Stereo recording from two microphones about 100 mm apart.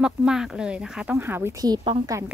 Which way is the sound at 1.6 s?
40° right (ahead or behind).